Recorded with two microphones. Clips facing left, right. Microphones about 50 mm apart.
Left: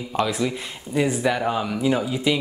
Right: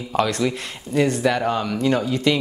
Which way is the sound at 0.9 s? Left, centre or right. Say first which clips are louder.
Right 2 dB; centre.